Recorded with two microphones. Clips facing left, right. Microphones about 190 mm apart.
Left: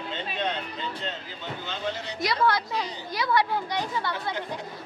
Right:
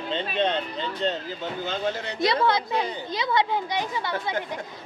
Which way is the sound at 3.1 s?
20° right (ahead or behind).